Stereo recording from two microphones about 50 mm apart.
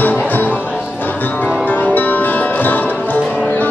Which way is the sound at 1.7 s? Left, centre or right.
Left.